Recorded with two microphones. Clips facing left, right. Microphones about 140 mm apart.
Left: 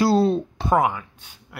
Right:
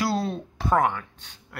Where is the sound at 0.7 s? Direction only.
10° left (ahead or behind).